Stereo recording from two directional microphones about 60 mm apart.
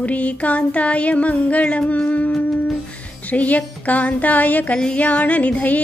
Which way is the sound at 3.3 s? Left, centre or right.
Left.